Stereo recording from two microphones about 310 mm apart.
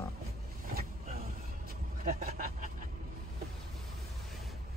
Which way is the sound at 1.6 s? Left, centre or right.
Right.